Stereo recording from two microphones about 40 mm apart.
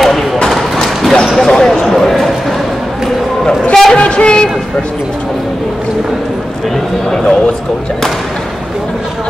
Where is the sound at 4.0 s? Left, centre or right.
Left.